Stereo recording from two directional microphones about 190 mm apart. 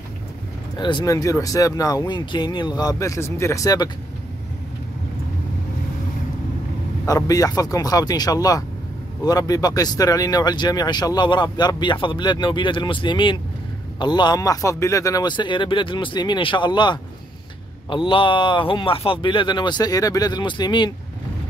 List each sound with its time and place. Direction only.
0.7 s speech: 25° left (ahead or behind)
7.1 s speech: 20° left (ahead or behind)